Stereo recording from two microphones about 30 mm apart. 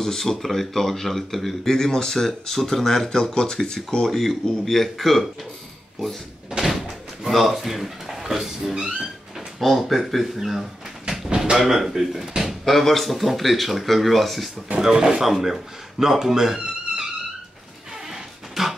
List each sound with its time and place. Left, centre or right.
0.0 s speech: centre
1.7 s speech: centre
6.5 s door: centre
8.7 s speech: centre
9.6 s speech: centre
11.2 s a sound: right
11.5 s speech: centre
14.8 s speech: centre
18.1 s music: centre